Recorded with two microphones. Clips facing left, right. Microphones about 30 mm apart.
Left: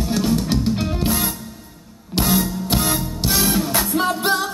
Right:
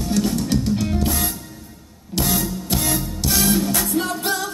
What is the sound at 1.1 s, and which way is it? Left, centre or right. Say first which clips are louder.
Music: left 2 dB; centre.